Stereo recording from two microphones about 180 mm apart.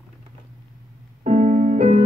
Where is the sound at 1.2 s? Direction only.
40° right (ahead or behind).